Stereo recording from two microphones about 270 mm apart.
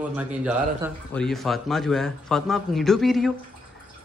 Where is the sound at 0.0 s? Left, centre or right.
Centre.